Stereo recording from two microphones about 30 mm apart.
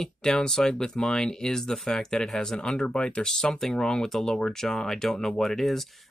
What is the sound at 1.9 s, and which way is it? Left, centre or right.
Speech, left.